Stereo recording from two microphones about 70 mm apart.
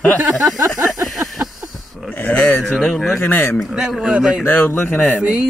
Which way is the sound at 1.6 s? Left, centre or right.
Right.